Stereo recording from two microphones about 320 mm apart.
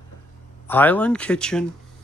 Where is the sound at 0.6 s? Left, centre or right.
Centre.